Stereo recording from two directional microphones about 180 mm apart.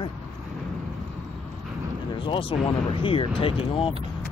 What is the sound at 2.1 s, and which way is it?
Speech, 30° left (ahead or behind).